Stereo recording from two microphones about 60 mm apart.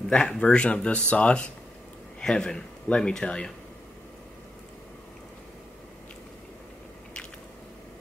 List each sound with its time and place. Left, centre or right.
0.1 s speech: centre
0.4 s speech: centre